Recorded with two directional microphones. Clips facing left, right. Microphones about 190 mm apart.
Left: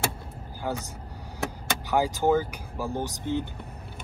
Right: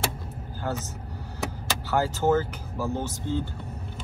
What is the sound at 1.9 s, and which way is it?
Speech, 15° left (ahead or behind).